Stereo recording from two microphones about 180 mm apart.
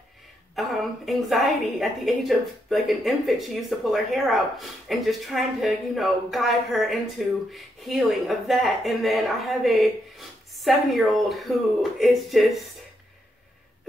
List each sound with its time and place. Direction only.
0.6 s a woman's voice: centre (ahead or behind)